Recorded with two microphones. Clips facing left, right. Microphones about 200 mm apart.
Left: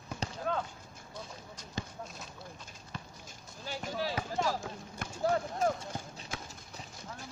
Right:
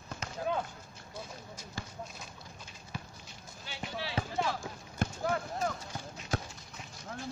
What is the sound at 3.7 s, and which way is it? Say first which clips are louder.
Speech: left 4 dB; 45° left (ahead or behind).